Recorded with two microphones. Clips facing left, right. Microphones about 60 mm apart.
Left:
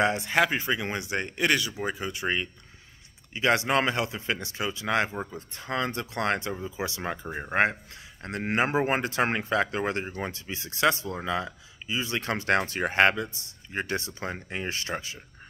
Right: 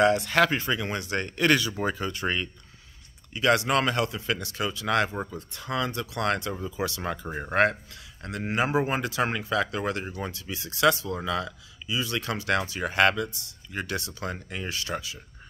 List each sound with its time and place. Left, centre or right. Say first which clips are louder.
0.0 s speech: right 3 dB; left
1.5 s speech: right 3 dB; centre
3.3 s speech: right 1 dB; left
12.9 s speech: even; left